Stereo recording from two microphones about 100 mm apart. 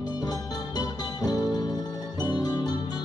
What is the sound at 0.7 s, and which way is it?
Music, 40° left (ahead or behind).